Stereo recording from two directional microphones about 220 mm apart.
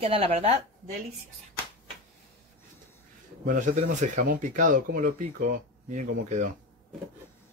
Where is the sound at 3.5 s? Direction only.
35° right (ahead or behind).